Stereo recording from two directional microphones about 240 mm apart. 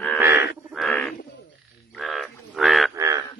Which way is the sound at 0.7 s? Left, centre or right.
Centre.